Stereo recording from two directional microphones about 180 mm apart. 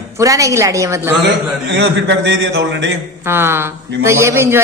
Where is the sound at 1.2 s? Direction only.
80° right.